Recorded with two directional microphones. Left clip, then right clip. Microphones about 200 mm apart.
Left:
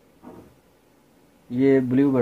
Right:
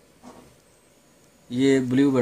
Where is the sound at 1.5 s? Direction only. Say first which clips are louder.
Left 2 dB; 20° left (ahead or behind).